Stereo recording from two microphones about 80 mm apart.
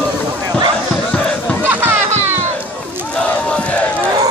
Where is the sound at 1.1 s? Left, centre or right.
Centre.